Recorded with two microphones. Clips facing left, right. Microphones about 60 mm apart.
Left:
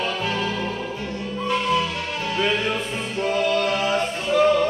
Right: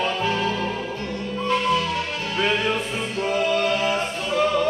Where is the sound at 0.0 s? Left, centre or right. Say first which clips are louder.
Right 2 dB; centre.